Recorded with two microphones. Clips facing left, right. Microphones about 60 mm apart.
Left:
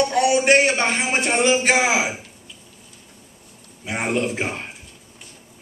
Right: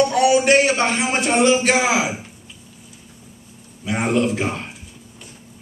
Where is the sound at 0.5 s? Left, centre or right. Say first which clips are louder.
Right 1 dB; left.